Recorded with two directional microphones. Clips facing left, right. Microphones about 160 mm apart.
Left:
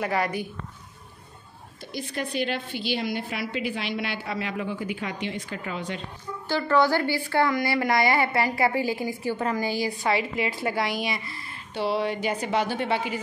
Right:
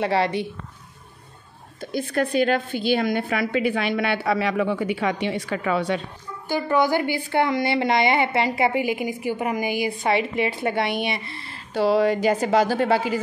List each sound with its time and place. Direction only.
0.0 s a woman's voice: 25° right (ahead or behind)
2.1 s a woman's voice: 50° right (ahead or behind); by 5.9 s 80° right
6.5 s a woman's voice: 15° right (ahead or behind)
11.7 s speech: 40° right (ahead or behind)
12.2 s a woman's voice: 90° right
12.4 s speech: 40° right (ahead or behind)